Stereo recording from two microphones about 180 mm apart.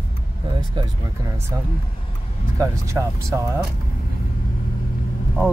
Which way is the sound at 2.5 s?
15° right (ahead or behind).